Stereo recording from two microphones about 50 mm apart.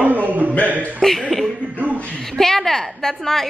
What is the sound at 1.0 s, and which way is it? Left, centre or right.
Speech, centre.